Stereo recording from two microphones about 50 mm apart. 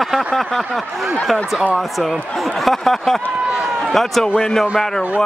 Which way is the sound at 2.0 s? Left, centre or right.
Centre.